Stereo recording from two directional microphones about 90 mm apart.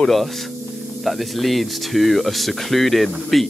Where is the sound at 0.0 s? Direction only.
Centre (ahead or behind).